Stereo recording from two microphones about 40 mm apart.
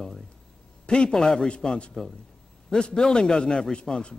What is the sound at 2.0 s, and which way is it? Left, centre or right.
A man's voice, centre.